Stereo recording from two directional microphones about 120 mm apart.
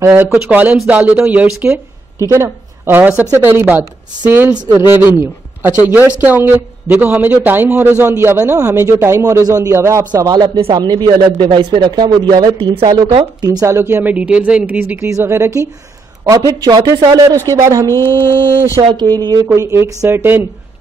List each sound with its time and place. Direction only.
0.1 s a man's voice: 15° right (ahead or behind)
2.1 s a woman's voice: 25° right (ahead or behind)
12.5 s speech: 50° right (ahead or behind)
13.2 s a man's voice: 35° right (ahead or behind); by 15.0 s 15° right (ahead or behind)
15.0 s a woman's voice: 25° right (ahead or behind)
17.8 s mantra: 20° left (ahead or behind)
18.8 s a woman's voice: 40° right (ahead or behind); by 20.4 s 20° right (ahead or behind)